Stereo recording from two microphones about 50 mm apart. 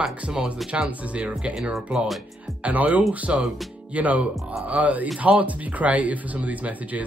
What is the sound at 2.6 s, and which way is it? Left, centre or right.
Speech, right.